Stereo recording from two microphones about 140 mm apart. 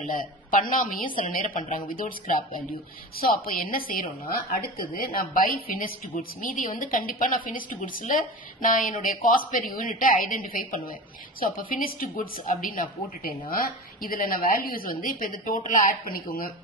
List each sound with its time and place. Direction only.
0.0 s a woman's voice: 70° left (ahead or behind)
13.2 s a woman's voice: 90° left
15.4 s speech: 70° left (ahead or behind); by 16.5 s 90° left